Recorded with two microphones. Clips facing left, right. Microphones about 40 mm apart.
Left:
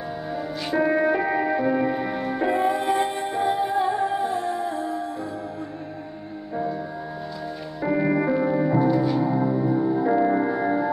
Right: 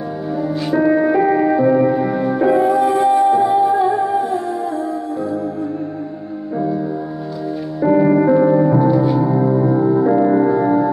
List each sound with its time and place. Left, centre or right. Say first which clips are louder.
0.7 s music: right 6 dB; centre
2.5 s music: right 7 dB; left
7.8 s music: right 9 dB; centre; by 9.7 s right
9.7 s music: right 7 dB; right
10.0 s organ: right 7 dB; centre